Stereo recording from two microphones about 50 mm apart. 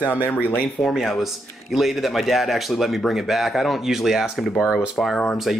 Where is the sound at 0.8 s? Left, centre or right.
Centre.